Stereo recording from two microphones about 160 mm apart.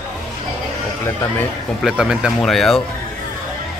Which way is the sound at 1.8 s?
5° right (ahead or behind).